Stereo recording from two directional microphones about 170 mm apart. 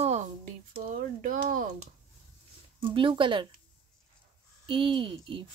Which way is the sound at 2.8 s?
30° right (ahead or behind).